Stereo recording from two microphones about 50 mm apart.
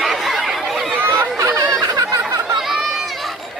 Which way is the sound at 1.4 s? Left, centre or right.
Right.